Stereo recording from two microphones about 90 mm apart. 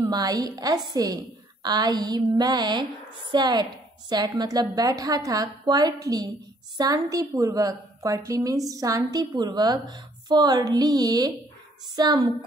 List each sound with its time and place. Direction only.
0.0 s a woman's voice: 45° right (ahead or behind)